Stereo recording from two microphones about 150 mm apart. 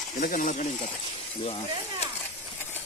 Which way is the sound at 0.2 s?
65° left (ahead or behind).